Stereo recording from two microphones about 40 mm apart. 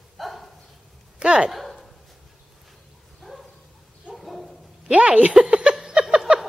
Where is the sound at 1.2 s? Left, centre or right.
Right.